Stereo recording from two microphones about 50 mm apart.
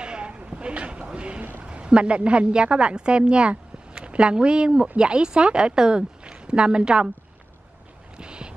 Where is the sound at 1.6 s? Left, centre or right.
Centre.